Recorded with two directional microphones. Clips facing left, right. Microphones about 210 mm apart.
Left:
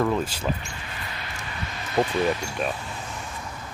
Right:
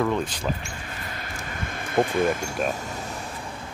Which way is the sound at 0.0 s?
5° left (ahead or behind).